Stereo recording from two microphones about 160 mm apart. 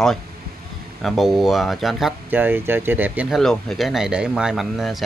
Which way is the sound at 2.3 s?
10° right (ahead or behind).